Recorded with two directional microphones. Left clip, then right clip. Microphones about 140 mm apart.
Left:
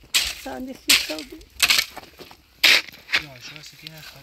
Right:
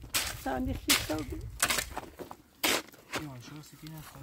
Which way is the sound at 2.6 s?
30° right (ahead or behind).